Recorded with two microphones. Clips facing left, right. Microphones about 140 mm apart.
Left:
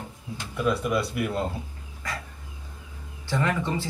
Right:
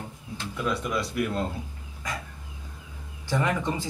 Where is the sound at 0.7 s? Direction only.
5° left (ahead or behind).